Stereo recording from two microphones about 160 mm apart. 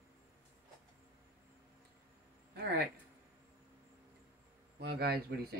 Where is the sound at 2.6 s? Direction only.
85° right.